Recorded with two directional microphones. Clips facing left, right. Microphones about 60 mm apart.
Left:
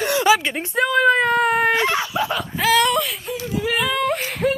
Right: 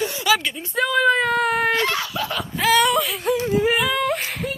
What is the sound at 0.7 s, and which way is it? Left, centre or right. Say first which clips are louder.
Speech: left 2 dB; centre.